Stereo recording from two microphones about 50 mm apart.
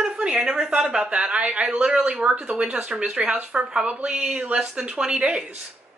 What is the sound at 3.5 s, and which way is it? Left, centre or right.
A woman's voice, centre.